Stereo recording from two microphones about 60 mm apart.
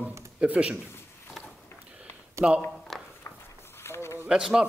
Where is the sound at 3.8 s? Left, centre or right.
Left.